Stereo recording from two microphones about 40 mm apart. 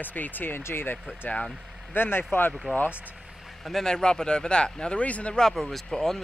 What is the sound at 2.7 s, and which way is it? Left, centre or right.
Speech, right.